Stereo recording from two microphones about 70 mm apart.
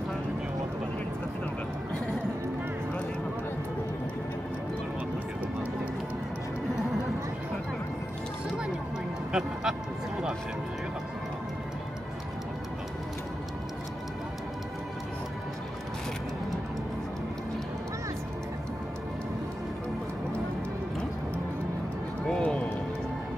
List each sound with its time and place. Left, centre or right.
9.3 s music: centre
22.2 s run: centre